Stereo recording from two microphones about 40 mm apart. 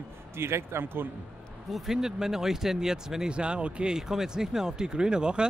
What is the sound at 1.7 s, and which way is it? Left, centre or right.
Speech, centre.